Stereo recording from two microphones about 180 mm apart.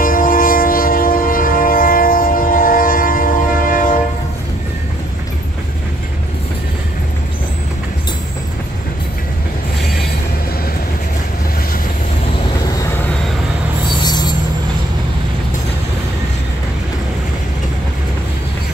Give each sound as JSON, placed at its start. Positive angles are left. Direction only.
{"t": 0.0, "sound": "train", "side_deg": 50}
{"t": 14.0, "sound": "music", "side_deg": 25}